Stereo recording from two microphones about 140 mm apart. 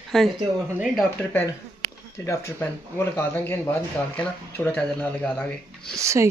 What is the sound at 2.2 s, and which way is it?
Speech, 20° left (ahead or behind).